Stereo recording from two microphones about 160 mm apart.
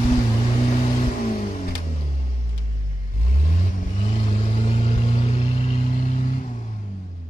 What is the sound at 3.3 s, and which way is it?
Vehicle, 50° left (ahead or behind).